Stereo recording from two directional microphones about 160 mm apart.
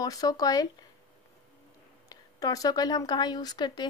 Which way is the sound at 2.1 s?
25° left (ahead or behind).